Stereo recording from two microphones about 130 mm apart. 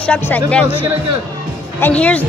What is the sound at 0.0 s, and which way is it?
Speech, 10° left (ahead or behind).